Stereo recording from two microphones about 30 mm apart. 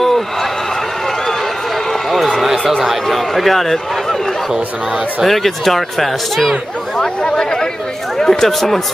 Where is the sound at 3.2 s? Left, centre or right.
Centre.